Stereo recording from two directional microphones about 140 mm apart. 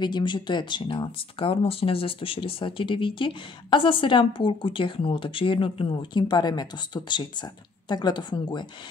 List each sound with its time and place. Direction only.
0.0 s speech: 35° left (ahead or behind)